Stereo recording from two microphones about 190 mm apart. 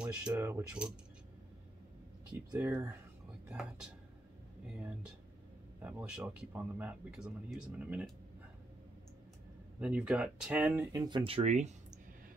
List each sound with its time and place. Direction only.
0.0 s speech: 5° right (ahead or behind)
2.5 s speech: 10° right (ahead or behind)
4.7 s speech: 5° right (ahead or behind)
9.8 s speech: 5° right (ahead or behind)
10.9 s speech: 20° right (ahead or behind)